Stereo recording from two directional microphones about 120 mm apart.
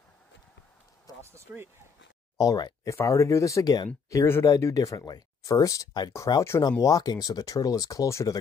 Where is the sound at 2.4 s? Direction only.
30° left (ahead or behind).